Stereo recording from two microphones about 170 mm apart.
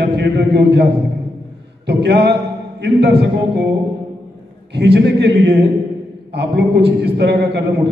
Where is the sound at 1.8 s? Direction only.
80° right.